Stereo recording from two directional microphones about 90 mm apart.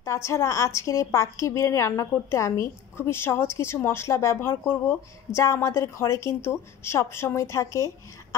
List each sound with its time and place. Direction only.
0.0 s a woman's voice: 30° left (ahead or behind)